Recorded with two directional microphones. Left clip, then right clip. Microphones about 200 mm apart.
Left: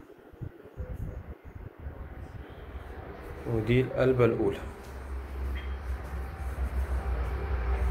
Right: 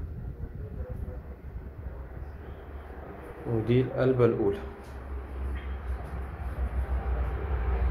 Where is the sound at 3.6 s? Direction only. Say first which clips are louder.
Even; centre (ahead or behind).